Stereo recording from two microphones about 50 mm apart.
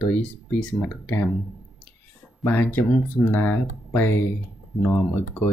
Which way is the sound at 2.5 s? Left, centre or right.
Left.